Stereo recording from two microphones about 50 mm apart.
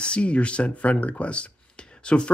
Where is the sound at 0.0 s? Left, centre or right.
Left.